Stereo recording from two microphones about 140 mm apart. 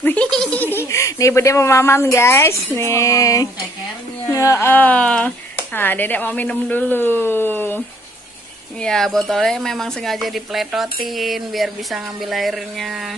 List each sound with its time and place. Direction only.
0.0 s speech: 10° left (ahead or behind)
8.8 s speech: 5° left (ahead or behind)